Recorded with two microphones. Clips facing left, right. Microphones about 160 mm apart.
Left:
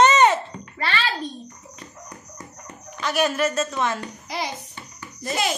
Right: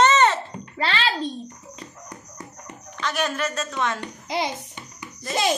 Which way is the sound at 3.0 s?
10° left (ahead or behind).